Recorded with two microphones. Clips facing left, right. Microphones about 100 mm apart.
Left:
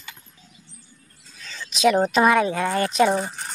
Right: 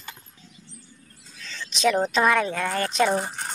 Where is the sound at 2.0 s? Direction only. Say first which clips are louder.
Left 3 dB; 10° left (ahead or behind).